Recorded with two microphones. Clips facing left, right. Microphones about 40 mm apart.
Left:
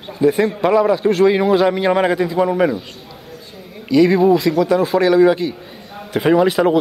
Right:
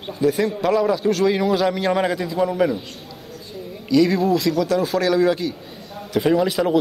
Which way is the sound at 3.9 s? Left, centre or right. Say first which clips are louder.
Left 5 dB; centre.